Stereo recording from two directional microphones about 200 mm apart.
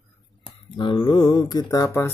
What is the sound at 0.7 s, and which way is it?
Mantra, 25° left (ahead or behind).